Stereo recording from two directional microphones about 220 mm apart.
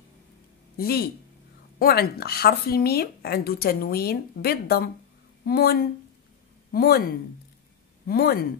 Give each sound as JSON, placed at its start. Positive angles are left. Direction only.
{"t": 0.7, "sound": "speech", "side_deg": 45}